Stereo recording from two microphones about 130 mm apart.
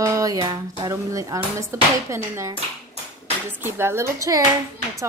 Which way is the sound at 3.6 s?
20° right (ahead or behind).